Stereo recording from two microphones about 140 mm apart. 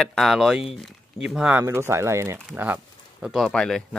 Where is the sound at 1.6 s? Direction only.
20° right (ahead or behind).